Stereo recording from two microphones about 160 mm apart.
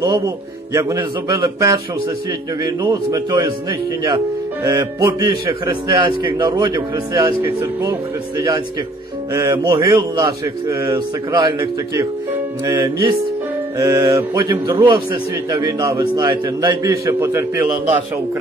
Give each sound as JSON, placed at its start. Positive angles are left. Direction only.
{"t": 0.7, "sound": "a man's voice", "side_deg": -20}
{"t": 4.6, "sound": "a man's voice", "side_deg": -20}
{"t": 8.4, "sound": "a man's voice", "side_deg": -25}
{"t": 12.6, "sound": "music", "side_deg": -15}
{"t": 13.7, "sound": "a man's voice", "side_deg": -20}